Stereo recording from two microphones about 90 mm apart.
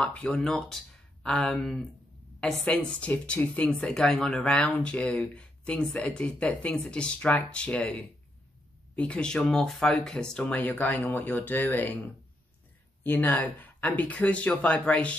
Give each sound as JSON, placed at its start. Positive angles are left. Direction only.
{"t": 0.0, "sound": "speech", "side_deg": 10}
{"t": 8.9, "sound": "speech", "side_deg": 10}
{"t": 13.0, "sound": "speech", "side_deg": 20}